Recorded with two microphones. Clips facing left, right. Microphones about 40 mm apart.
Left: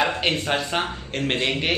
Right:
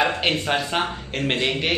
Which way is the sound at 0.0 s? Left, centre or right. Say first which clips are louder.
Right 1 dB; centre.